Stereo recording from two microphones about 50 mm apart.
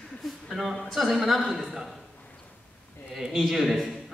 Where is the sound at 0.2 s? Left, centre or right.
Centre.